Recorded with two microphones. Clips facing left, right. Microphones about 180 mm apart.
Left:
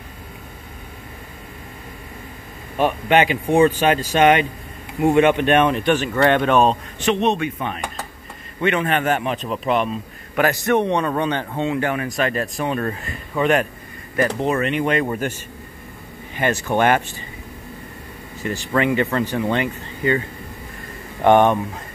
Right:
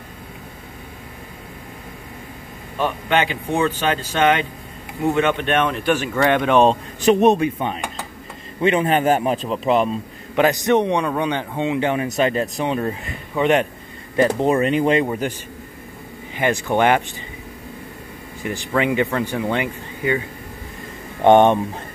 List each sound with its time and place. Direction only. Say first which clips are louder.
2.8 s speech: left 3 dB; 15° left (ahead or behind)
5.9 s a man's voice: left 1 dB; 10° right (ahead or behind)
7.0 s a man's voice: right 6 dB; 45° right (ahead or behind)
7.3 s a man's voice: right 3 dB; 30° right (ahead or behind)
10.3 s a man's voice: right 2 dB; 20° right (ahead or behind)
15.0 s a man's voice: even; 15° right (ahead or behind)
16.3 s a man's voice: right 1 dB; 15° right (ahead or behind)
18.4 s a man's voice: left 1 dB; 15° right (ahead or behind)
21.2 s speech: right 2 dB; 20° right (ahead or behind)